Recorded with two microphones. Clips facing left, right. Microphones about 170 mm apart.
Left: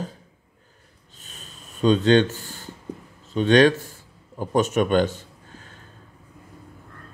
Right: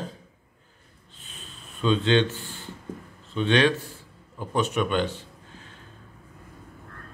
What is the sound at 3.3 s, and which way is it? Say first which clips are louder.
Speech: left 5 dB; 40° left (ahead or behind).